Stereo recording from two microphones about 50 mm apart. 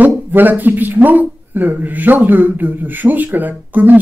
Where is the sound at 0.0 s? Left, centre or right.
Right.